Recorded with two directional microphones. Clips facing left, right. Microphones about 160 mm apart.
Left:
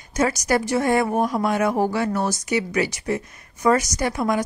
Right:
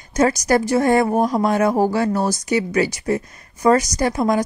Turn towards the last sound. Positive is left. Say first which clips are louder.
# right 4 dB
turn(degrees=-40)  # may be behind; listen again after turning